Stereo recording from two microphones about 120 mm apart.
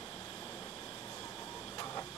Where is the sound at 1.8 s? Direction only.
25° left (ahead or behind).